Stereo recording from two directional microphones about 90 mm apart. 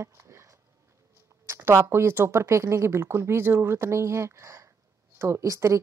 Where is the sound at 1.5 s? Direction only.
30° right (ahead or behind).